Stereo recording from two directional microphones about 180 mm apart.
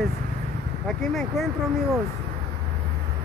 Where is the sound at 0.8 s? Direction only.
5° left (ahead or behind).